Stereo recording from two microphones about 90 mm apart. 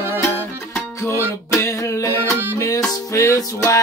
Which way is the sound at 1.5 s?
35° left (ahead or behind).